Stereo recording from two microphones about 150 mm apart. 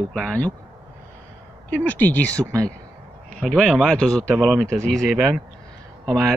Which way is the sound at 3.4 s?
5° left (ahead or behind).